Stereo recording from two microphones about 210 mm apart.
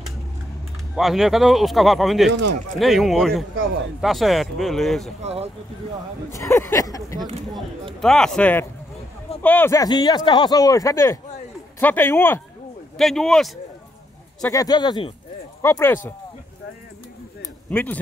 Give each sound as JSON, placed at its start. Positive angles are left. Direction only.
{"t": 0.9, "sound": "speech", "side_deg": 0}
{"t": 5.2, "sound": "speech", "side_deg": -30}
{"t": 6.3, "sound": "speech", "side_deg": 15}
{"t": 7.2, "sound": "speech", "side_deg": -30}
{"t": 8.0, "sound": "speech", "side_deg": 0}
{"t": 14.5, "sound": "speech", "side_deg": 15}
{"t": 17.4, "sound": "a sound", "side_deg": 10}